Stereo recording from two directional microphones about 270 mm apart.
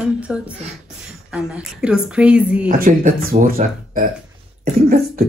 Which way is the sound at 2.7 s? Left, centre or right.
Right.